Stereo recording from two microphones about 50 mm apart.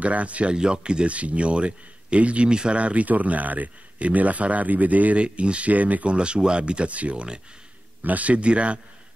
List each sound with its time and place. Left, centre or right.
0.0 s speech: right
6.1 s speech: centre